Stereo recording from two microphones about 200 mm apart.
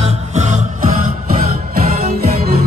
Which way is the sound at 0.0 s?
35° right (ahead or behind).